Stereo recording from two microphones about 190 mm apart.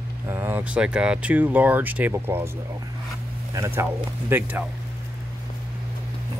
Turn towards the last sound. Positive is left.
turn(degrees=-10)  # may be behind; listen again after turning